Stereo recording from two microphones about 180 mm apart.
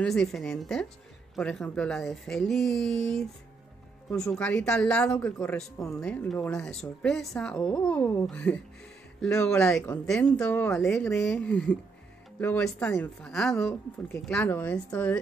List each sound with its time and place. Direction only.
0.0 s a woman's voice: 5° left (ahead or behind)